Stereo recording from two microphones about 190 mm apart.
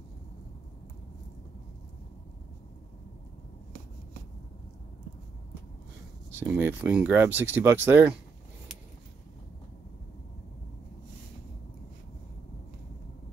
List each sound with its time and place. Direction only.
6.3 s speech: 10° right (ahead or behind)